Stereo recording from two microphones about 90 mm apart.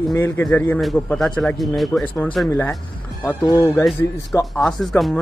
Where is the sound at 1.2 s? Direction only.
5° left (ahead or behind).